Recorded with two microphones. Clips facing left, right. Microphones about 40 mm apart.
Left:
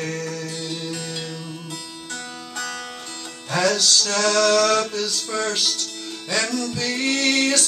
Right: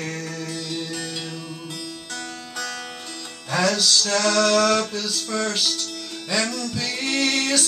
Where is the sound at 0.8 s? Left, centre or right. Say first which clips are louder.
Even; centre.